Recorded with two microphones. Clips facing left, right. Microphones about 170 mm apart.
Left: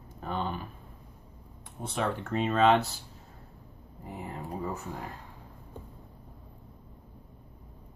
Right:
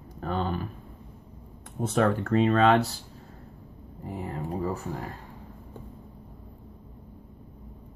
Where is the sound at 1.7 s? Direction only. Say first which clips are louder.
Right 7 dB; 50° right (ahead or behind).